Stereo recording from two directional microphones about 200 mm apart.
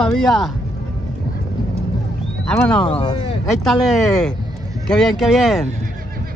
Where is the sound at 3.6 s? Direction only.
Centre (ahead or behind).